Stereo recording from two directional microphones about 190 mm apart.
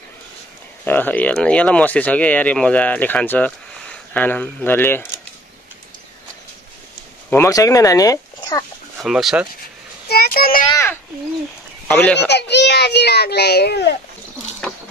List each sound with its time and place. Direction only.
0.8 s speech: 10° left (ahead or behind)
7.2 s speech: 15° left (ahead or behind)
9.0 s speech: centre (ahead or behind)
10.0 s a child's voice: 55° left (ahead or behind)
11.9 s speech: 5° left (ahead or behind)
12.3 s a child's voice: 60° left (ahead or behind)